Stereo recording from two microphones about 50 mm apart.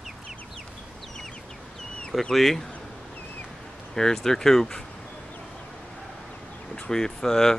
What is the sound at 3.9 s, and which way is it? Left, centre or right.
Speech, centre.